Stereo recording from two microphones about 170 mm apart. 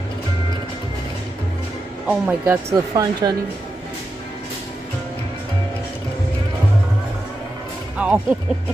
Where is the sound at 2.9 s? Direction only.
25° right (ahead or behind).